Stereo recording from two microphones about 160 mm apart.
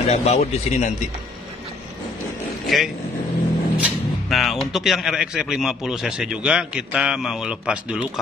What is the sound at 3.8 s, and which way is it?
Speech, centre (ahead or behind).